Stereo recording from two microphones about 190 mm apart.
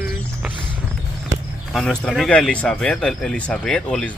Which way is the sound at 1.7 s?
Centre (ahead or behind).